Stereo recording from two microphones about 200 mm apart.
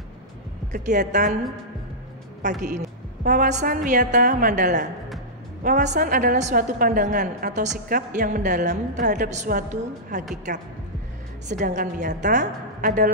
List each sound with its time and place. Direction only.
0.7 s a woman's voice: 35° right (ahead or behind)
2.4 s a woman's voice: 40° right (ahead or behind)
11.4 s a woman's voice: 40° right (ahead or behind)